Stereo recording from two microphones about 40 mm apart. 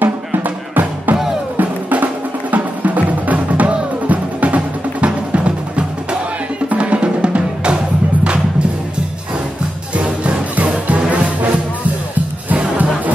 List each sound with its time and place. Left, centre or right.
0.0 s music: right
1.6 s drum: right
2.5 s music: right
9.9 s music: right
12.4 s music: right